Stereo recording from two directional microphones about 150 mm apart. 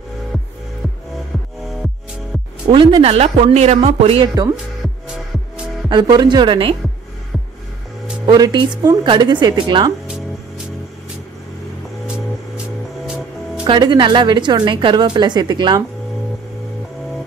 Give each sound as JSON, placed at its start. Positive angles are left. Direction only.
{"t": 2.7, "sound": "speech", "side_deg": -35}
{"t": 5.9, "sound": "speech", "side_deg": -30}
{"t": 8.3, "sound": "speech", "side_deg": -30}
{"t": 12.1, "sound": "music", "side_deg": -5}
{"t": 13.7, "sound": "speech", "side_deg": -30}